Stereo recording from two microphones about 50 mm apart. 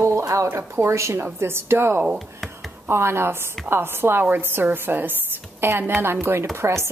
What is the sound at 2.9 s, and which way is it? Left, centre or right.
A woman's voice, right.